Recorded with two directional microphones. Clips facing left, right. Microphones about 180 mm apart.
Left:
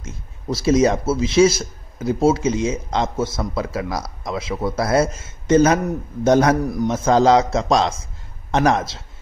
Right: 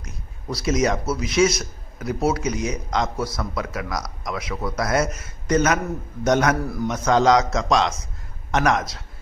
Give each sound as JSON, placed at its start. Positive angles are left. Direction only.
{"t": 0.0, "sound": "a man's voice", "side_deg": 25}
{"t": 6.6, "sound": "a man's voice", "side_deg": 15}
{"t": 6.9, "sound": "a man's voice", "side_deg": 30}